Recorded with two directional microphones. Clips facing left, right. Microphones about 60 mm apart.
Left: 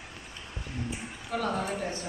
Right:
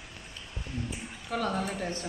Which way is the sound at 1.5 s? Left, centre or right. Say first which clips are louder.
Left 2 dB; centre.